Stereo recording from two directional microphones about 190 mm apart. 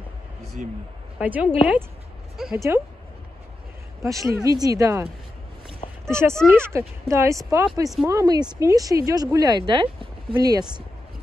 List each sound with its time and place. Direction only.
0.6 s a man's voice: 45° right (ahead or behind)
1.2 s speech: 10° right (ahead or behind)
2.5 s speech: 15° right (ahead or behind)
4.0 s speech: 15° right (ahead or behind)
6.1 s speech: 15° right (ahead or behind)